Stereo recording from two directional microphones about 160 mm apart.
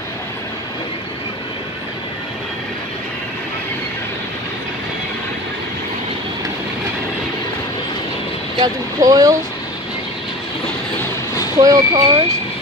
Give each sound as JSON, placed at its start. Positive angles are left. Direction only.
{"t": 8.5, "sound": "speech", "side_deg": -25}
{"t": 11.6, "sound": "speech", "side_deg": -25}